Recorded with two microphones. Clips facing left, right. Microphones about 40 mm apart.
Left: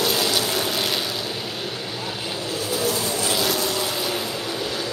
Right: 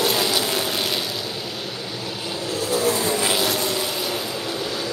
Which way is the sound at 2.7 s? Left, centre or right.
Right.